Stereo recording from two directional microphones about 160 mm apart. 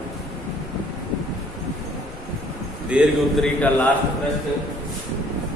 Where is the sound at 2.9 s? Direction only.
5° right (ahead or behind).